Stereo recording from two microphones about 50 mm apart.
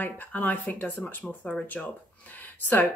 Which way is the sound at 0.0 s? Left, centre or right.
Left.